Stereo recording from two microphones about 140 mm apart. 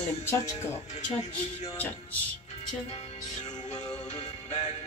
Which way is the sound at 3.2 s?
30° left (ahead or behind).